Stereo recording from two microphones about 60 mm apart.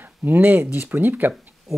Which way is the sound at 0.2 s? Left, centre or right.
Right.